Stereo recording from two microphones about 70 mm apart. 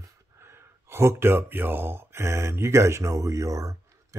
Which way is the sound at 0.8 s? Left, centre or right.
Right.